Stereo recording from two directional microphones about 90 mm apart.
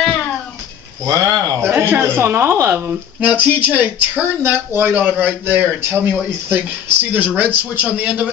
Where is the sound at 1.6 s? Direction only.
25° right (ahead or behind).